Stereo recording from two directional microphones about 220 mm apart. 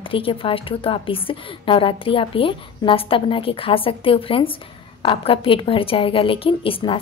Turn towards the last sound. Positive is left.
turn(degrees=25)  # may be behind; listen again after turning